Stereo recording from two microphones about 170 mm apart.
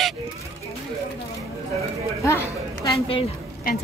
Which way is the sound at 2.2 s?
15° left (ahead or behind).